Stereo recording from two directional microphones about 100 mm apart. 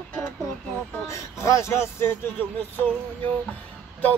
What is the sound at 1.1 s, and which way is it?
Music, 30° left (ahead or behind).